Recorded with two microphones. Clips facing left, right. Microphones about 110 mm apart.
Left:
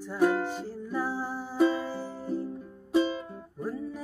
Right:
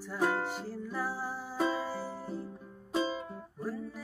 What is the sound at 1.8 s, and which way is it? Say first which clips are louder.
Music: left 2 dB; 5° right (ahead or behind).